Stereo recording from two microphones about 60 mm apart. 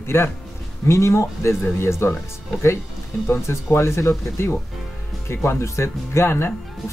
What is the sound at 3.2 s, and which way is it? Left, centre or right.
Speech, left.